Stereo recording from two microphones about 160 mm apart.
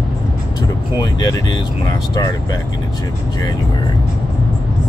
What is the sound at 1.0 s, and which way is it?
Speech, 25° left (ahead or behind).